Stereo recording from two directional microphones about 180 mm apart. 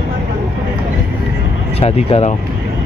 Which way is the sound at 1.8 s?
35° left (ahead or behind).